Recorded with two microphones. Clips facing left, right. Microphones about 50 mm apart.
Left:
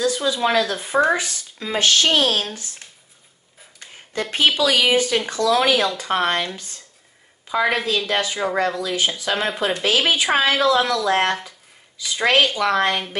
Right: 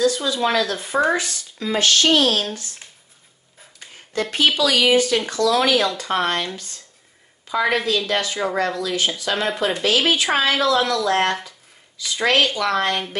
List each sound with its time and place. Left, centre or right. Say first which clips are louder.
0.0 s speech: right 1 dB; centre
4.1 s speech: even; left